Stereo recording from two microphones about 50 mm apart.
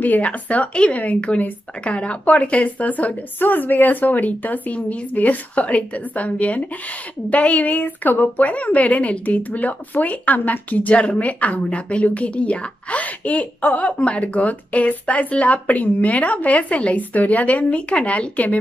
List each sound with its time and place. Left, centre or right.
0.0 s a woman's voice: left
8.5 s speech: left